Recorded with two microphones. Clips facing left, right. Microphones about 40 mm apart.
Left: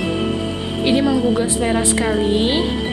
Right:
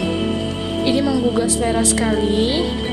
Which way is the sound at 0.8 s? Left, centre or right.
Left.